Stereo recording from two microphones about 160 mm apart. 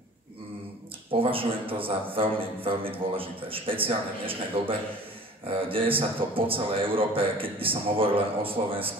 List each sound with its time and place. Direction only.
1.2 s a man's voice: 35° right (ahead or behind)